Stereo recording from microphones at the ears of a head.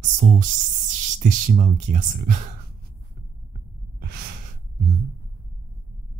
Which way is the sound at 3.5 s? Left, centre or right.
Right.